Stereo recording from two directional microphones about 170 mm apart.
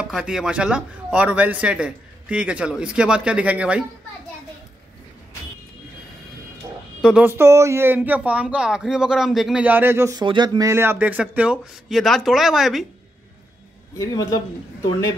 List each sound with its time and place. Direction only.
0.0 s a man's voice: 5° right (ahead or behind)
7.0 s a man's voice: 5° right (ahead or behind)
10.2 s a man's voice: 25° right (ahead or behind); by 12.8 s centre (ahead or behind)
13.9 s a man's voice: 20° left (ahead or behind)